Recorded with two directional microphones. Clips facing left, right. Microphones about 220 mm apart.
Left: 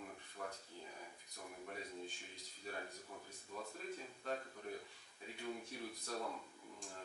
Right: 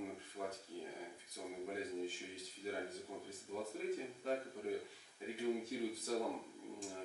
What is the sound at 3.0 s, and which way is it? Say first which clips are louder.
Speech: right 6 dB; 20° right (ahead or behind).